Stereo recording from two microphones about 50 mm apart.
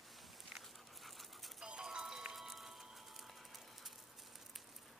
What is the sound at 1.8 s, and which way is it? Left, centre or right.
Music, centre.